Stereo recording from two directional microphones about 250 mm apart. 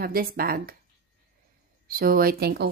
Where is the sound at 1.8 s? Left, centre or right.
Right.